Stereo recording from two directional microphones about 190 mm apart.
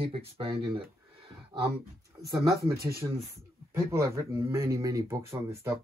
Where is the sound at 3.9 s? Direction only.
15° right (ahead or behind).